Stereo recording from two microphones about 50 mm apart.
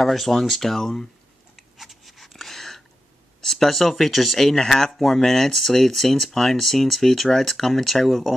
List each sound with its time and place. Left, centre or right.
0.0 s speech: centre
1.8 s a sound: centre
3.3 s speech: centre